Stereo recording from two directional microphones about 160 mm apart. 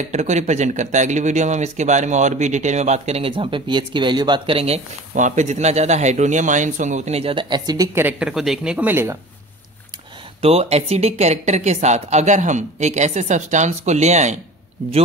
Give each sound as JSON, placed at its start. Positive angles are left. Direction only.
{"t": 0.1, "sound": "speech", "side_deg": -45}
{"t": 10.4, "sound": "speech", "side_deg": -40}